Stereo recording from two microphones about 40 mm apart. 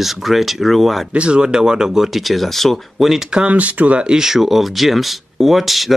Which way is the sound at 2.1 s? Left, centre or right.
Centre.